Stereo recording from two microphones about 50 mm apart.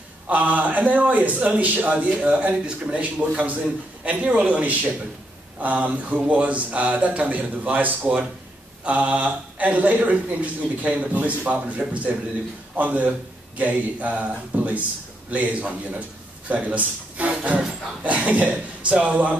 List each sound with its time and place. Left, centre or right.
0.3 s a man's voice: right